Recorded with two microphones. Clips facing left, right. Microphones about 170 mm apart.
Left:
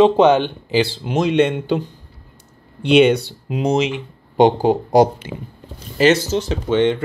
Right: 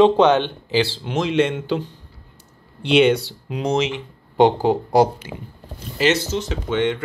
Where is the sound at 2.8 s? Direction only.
15° left (ahead or behind).